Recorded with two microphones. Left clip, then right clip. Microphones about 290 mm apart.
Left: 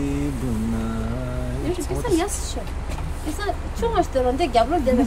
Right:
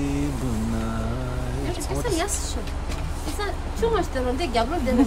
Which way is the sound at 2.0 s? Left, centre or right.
Centre.